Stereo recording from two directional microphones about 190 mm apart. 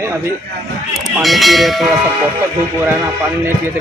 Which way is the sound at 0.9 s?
Centre (ahead or behind).